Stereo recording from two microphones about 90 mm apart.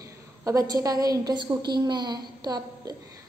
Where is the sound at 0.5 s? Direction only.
40° right (ahead or behind).